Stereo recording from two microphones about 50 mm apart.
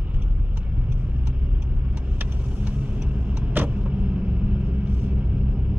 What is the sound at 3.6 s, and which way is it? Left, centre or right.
Vehicle, right.